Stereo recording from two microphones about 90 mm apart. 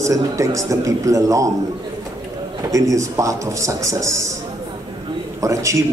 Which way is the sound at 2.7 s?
40° right (ahead or behind).